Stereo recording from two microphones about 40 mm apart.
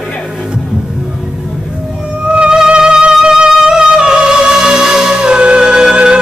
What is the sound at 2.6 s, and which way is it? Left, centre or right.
Music, centre.